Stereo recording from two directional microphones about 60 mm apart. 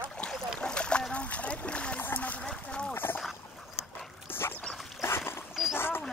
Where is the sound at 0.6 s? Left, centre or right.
Centre.